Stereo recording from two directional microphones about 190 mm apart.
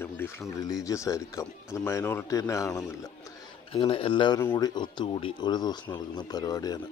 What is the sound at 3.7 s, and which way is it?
Speech, 30° left (ahead or behind).